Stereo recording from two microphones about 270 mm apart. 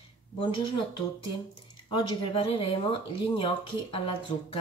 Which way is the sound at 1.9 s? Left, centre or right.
Centre.